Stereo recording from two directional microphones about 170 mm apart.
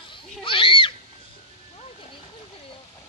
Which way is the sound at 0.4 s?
30° left (ahead or behind).